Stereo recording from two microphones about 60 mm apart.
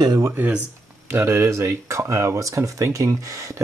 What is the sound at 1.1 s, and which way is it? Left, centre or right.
Speech, right.